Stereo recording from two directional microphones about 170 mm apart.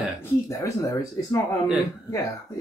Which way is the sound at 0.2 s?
20° left (ahead or behind).